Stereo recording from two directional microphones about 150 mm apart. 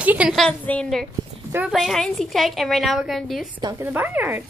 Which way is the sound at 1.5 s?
10° right (ahead or behind).